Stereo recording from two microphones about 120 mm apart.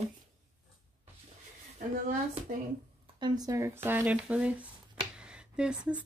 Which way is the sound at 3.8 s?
15° right (ahead or behind).